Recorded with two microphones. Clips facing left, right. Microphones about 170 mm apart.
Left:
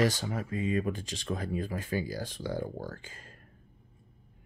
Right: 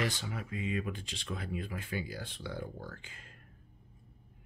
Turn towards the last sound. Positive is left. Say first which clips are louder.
# left 5 dB
turn(degrees=40)  # may be behind; listen again after turning